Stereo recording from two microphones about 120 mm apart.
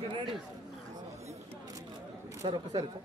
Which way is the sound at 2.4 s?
40° right (ahead or behind).